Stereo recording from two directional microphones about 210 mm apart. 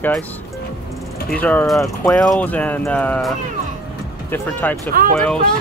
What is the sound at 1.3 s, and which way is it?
Speech, 5° left (ahead or behind).